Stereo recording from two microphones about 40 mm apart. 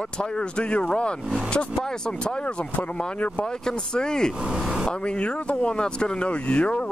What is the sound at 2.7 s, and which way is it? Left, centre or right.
Speech, left.